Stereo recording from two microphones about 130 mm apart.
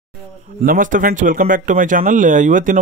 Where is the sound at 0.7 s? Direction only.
90° right.